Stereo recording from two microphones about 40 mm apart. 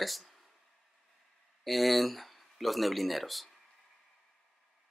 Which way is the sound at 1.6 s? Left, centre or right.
Centre.